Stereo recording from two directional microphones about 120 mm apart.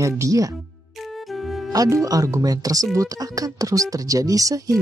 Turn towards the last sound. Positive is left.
turn(degrees=-30)  # may be behind; listen again after turning